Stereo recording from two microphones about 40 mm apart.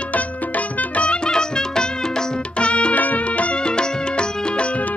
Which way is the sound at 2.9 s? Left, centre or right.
Left.